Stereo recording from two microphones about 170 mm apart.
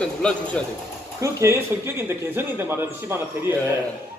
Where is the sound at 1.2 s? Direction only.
15° right (ahead or behind).